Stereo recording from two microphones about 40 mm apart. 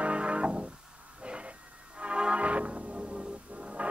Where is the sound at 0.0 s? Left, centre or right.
Right.